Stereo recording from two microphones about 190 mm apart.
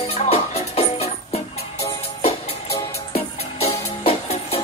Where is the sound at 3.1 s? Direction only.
30° left (ahead or behind).